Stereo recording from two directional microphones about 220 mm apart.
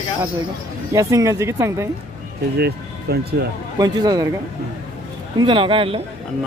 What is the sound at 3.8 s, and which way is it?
Speech, 15° right (ahead or behind).